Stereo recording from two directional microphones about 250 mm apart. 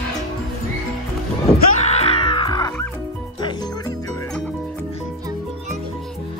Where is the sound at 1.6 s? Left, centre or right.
Left.